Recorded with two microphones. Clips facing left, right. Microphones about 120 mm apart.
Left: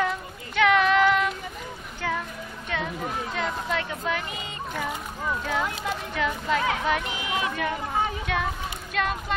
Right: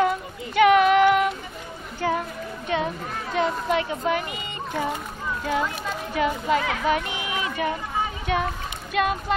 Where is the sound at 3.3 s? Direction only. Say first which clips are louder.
Right 9 dB; 15° right (ahead or behind).